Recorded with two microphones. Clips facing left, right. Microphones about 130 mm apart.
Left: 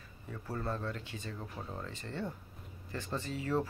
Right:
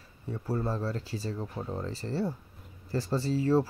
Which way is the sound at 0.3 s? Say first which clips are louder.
Right 6 dB; 30° right (ahead or behind).